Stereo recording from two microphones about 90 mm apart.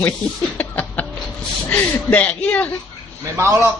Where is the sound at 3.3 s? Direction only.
35° right (ahead or behind).